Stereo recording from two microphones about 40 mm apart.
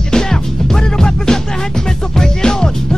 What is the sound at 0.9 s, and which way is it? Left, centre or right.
Music, centre.